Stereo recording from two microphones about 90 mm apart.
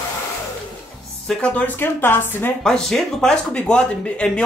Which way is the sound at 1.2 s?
15° left (ahead or behind).